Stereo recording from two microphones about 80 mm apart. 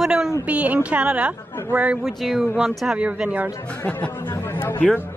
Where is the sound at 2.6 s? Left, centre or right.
Centre.